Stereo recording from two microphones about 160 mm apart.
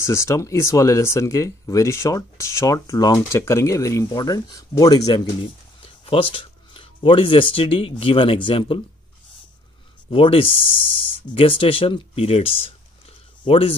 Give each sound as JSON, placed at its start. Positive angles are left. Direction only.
{"t": 0.0, "sound": "speech", "side_deg": 20}
{"t": 10.0, "sound": "speech", "side_deg": 35}